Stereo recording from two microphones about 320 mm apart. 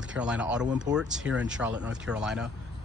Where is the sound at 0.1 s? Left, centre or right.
Centre.